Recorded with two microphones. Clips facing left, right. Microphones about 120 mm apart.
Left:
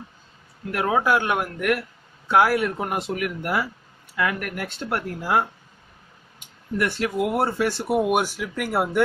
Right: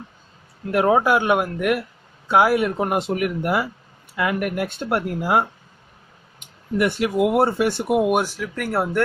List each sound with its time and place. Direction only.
0.7 s speech: 25° right (ahead or behind)
1.2 s speech: 10° right (ahead or behind)
2.8 s speech: 25° right (ahead or behind)
7.0 s speech: 15° right (ahead or behind)
8.1 s speech: centre (ahead or behind)